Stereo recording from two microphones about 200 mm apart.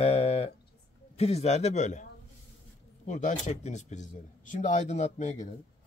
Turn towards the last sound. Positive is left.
turn(degrees=40)  # may be behind; listen again after turning